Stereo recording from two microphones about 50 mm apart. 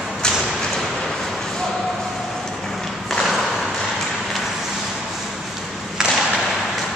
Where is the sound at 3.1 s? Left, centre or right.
Centre.